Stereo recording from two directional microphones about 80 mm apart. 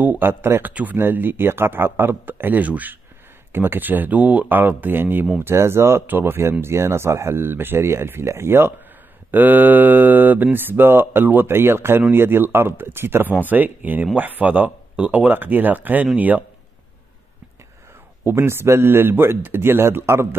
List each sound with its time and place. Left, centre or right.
0.0 s speech: right
18.2 s speech: right